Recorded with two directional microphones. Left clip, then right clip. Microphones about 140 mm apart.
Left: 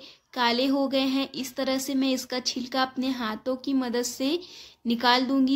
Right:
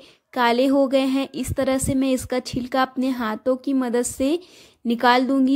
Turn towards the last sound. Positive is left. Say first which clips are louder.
# right 5 dB
turn(degrees=-55)  # may be behind; listen again after turning